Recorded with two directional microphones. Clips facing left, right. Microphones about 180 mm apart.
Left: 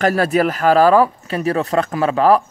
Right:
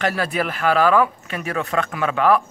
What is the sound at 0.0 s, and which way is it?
Speech, 45° left (ahead or behind).